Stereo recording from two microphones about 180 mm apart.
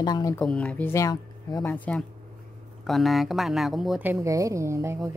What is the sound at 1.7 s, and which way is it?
A woman's voice, 5° left (ahead or behind).